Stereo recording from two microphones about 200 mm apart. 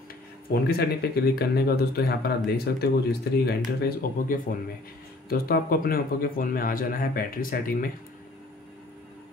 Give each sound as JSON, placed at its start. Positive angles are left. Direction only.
{"t": 0.5, "sound": "speech", "side_deg": 50}